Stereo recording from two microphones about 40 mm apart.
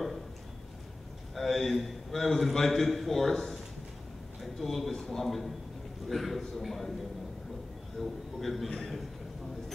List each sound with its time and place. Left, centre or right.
1.3 s a man's voice: centre
8.0 s a man's voice: centre